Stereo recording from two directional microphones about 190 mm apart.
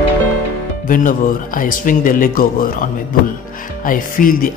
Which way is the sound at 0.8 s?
45° left (ahead or behind).